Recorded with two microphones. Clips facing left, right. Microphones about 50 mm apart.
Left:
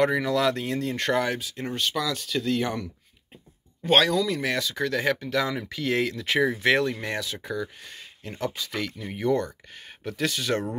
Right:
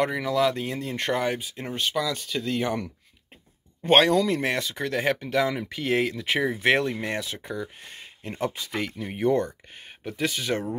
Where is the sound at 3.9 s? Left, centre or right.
Right.